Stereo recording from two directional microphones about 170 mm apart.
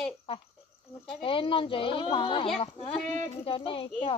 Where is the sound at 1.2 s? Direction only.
30° left (ahead or behind).